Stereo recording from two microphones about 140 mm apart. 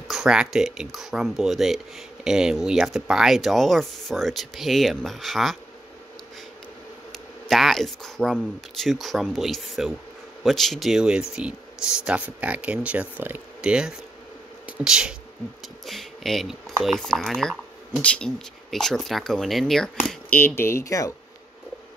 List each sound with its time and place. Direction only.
0.1 s speech: 5° right (ahead or behind)
7.4 s speech: centre (ahead or behind)
20.3 s speech: 15° left (ahead or behind)